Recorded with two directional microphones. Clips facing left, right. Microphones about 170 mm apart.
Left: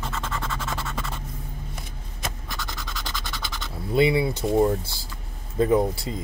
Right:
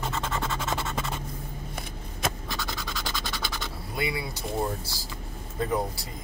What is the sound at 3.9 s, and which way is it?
Speech, 25° left (ahead or behind).